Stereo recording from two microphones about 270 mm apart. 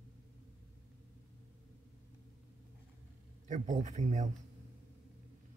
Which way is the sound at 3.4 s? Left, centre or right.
Right.